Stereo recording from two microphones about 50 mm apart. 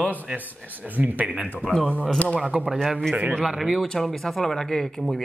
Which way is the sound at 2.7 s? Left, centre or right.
Centre.